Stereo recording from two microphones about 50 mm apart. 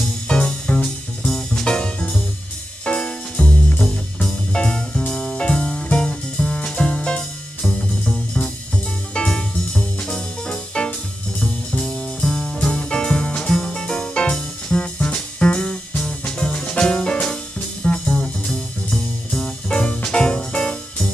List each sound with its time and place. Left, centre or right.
0.3 s music: centre